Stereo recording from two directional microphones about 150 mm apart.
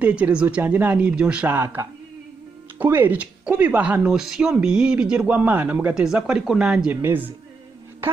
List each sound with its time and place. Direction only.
0.0 s speech: 10° right (ahead or behind)